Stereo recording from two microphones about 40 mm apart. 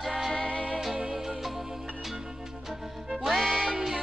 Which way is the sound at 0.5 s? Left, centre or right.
Left.